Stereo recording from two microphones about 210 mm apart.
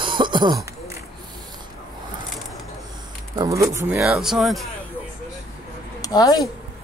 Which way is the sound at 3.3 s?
15° right (ahead or behind).